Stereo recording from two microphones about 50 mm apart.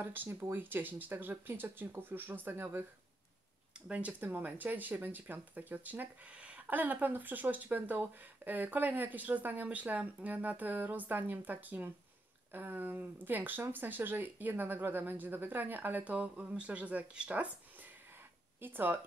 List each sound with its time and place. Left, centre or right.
0.0 s speech: right
2.5 s speech: right
3.9 s speech: right
4.3 s speech: right
6.3 s a sound: right
6.8 s speech: right
18.6 s speech: right